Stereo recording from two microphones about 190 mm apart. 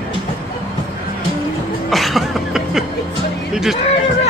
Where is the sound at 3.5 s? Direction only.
Centre (ahead or behind).